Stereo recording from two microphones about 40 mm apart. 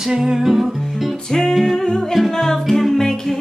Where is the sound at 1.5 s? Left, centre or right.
Centre.